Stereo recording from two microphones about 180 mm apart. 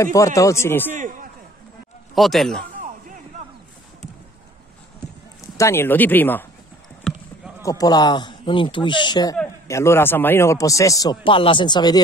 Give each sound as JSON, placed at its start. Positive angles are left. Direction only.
{"t": 0.0, "sound": "speech", "side_deg": 15}
{"t": 2.1, "sound": "speech", "side_deg": 0}
{"t": 5.6, "sound": "speech", "side_deg": 15}
{"t": 7.6, "sound": "speech", "side_deg": 20}